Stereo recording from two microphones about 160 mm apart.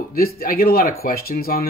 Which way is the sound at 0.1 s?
65° left (ahead or behind).